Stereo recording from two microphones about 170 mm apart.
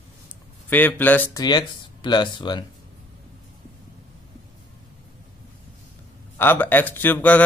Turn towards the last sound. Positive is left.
turn(degrees=10)  # may be behind; listen again after turning